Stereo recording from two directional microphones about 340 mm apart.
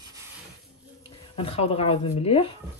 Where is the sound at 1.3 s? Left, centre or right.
Centre.